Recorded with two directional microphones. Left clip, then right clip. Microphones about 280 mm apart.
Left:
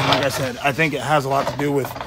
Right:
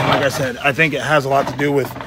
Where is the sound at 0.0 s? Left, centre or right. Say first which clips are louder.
Right 3 dB; centre.